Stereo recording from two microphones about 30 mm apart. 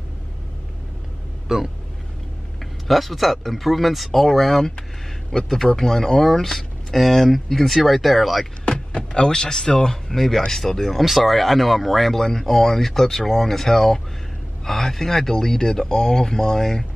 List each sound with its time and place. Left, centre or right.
1.5 s speech: centre
2.9 s speech: centre
4.3 s speech: centre
8.6 s speech: left
10.0 s speech: centre
11.0 s speech: centre